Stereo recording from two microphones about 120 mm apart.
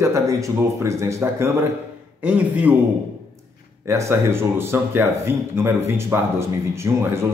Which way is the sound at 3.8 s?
25° right (ahead or behind).